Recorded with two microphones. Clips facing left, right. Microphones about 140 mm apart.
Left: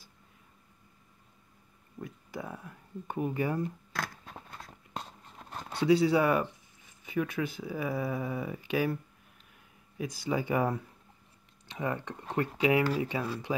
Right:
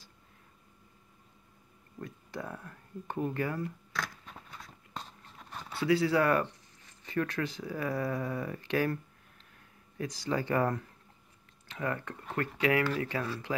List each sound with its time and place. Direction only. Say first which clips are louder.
2.0 s speech: even; 5° left (ahead or behind)
5.8 s speech: left 3 dB; 15° left (ahead or behind)